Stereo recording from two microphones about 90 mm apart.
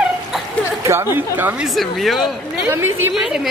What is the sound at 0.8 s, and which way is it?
Speech, 25° right (ahead or behind).